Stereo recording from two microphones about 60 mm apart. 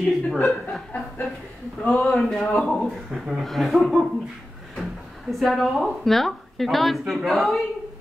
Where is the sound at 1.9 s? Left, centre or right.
Centre.